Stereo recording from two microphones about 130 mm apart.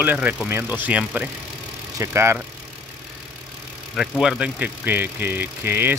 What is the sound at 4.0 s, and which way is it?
Speech, 5° right (ahead or behind).